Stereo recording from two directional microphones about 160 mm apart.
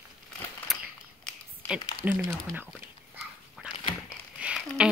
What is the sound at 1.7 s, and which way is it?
Speech, 10° right (ahead or behind).